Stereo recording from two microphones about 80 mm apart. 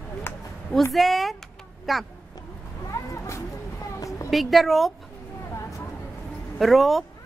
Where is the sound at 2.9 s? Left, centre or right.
Left.